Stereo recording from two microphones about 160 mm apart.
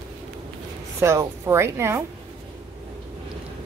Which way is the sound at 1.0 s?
15° right (ahead or behind).